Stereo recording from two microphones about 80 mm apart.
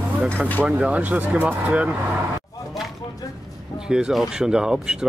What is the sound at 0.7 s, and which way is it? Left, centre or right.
Speech, centre.